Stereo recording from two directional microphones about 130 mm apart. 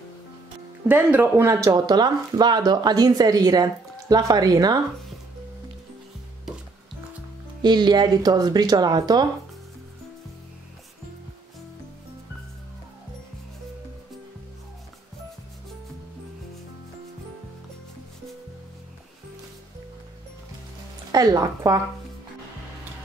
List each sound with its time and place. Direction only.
0.8 s speech: 15° right (ahead or behind)
7.6 s speech: 35° right (ahead or behind)
21.1 s speech: 30° right (ahead or behind)